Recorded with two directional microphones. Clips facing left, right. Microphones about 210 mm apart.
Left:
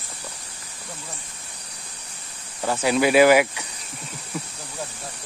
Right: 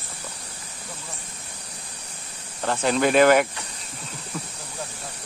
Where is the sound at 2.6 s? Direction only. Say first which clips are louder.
Left 1 dB; 10° left (ahead or behind).